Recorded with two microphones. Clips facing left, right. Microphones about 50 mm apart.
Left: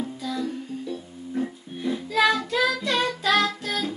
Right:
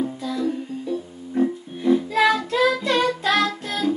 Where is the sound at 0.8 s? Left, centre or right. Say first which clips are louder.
Right 5 dB; right.